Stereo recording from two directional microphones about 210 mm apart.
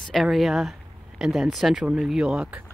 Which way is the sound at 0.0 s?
Centre (ahead or behind).